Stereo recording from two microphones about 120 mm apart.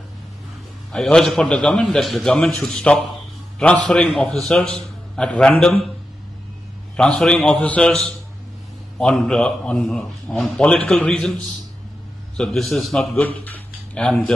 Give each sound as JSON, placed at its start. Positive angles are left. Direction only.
{"t": 0.9, "sound": "a man's voice", "side_deg": 5}
{"t": 7.0, "sound": "a man's voice", "side_deg": 5}
{"t": 9.0, "sound": "a man's voice", "side_deg": 5}
{"t": 12.4, "sound": "a man's voice", "side_deg": 5}
{"t": 13.1, "sound": "a man's voice", "side_deg": 15}